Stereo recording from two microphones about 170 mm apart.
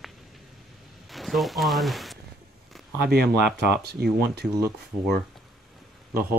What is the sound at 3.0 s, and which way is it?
Speech, 70° right (ahead or behind).